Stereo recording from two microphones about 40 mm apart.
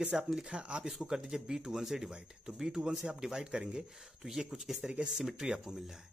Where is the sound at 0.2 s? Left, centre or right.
Centre.